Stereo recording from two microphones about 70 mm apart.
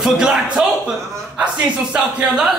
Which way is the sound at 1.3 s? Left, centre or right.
Centre.